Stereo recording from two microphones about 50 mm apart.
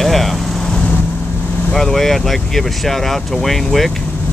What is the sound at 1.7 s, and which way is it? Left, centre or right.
Vehicle, centre.